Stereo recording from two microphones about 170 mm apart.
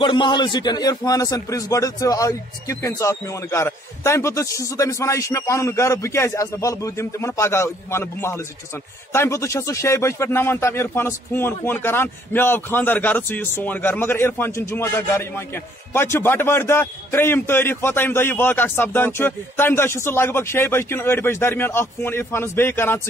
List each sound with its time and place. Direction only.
0.0 s speech: 30° left (ahead or behind); by 22.9 s 15° left (ahead or behind)